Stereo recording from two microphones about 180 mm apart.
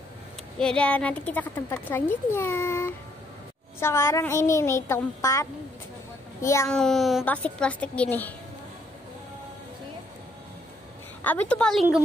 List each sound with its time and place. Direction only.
0.6 s a child's voice: 5° left (ahead or behind)
6.7 s a child's voice: 5° left (ahead or behind)
11.2 s a woman's voice: 10° left (ahead or behind)